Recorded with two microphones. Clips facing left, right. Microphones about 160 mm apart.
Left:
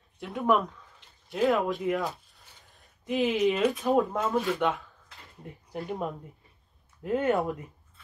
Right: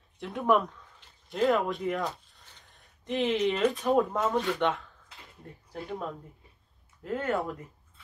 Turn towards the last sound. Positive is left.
turn(degrees=20)  # may be behind; listen again after turning